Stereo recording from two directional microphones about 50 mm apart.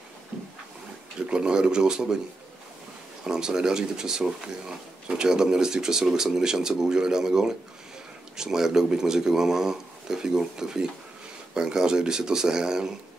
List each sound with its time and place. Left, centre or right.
1.3 s speech: centre
3.3 s speech: centre